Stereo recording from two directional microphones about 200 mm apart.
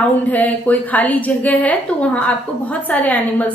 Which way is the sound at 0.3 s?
10° left (ahead or behind).